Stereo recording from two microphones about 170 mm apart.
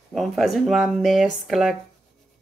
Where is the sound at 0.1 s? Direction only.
Centre (ahead or behind).